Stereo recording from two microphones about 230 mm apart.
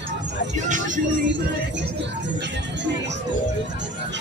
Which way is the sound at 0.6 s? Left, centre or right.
Right.